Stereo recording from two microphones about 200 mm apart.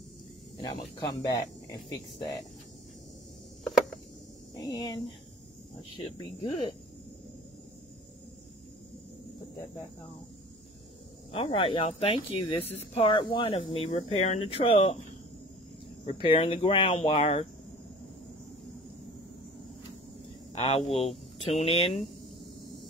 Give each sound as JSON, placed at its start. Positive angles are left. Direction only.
{"t": 0.6, "sound": "speech", "side_deg": 20}
{"t": 3.6, "sound": "a sound", "side_deg": 0}
{"t": 4.6, "sound": "speech", "side_deg": 20}
{"t": 11.3, "sound": "speech", "side_deg": 25}
{"t": 16.1, "sound": "speech", "side_deg": 30}
{"t": 20.5, "sound": "speech", "side_deg": 30}